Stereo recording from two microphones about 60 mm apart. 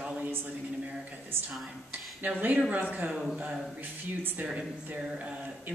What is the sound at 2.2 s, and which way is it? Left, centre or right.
Speech, right.